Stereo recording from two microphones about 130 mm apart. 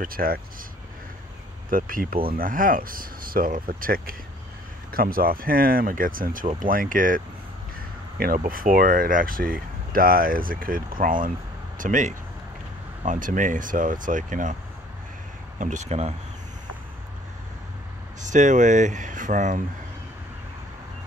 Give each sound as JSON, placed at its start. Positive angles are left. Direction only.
{"t": 0.0, "sound": "speech", "side_deg": -90}
{"t": 1.7, "sound": "speech", "side_deg": -90}
{"t": 8.5, "sound": "speech", "side_deg": -90}
{"t": 11.8, "sound": "speech", "side_deg": -75}
{"t": 15.6, "sound": "speech", "side_deg": -65}
{"t": 18.2, "sound": "speech", "side_deg": -70}